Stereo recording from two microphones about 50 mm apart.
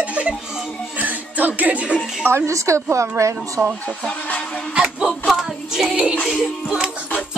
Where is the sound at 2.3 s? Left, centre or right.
Right.